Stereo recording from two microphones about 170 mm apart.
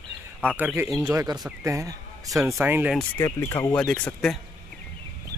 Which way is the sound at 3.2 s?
15° left (ahead or behind).